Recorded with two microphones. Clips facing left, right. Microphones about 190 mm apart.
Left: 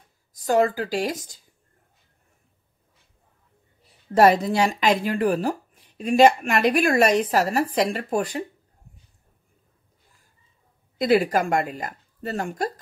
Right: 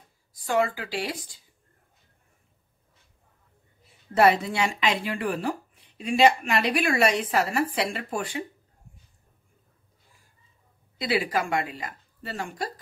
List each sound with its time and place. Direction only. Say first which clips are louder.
0.3 s speech: left 5 dB; 40° left (ahead or behind)
4.1 s speech: left 4 dB; 40° left (ahead or behind)
11.0 s speech: left 7 dB; 45° left (ahead or behind)